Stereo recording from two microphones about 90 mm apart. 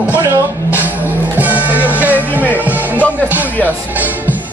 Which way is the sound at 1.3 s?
20° right (ahead or behind).